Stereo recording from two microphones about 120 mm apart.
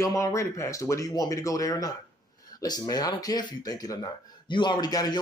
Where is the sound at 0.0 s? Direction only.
25° left (ahead or behind).